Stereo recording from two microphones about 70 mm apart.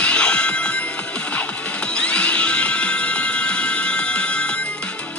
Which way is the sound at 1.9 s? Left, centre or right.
Centre.